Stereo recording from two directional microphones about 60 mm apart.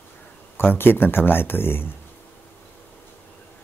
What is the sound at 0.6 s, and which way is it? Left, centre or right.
Speech, left.